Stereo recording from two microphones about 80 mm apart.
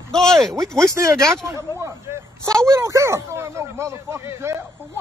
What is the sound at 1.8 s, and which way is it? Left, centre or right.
Speech, right.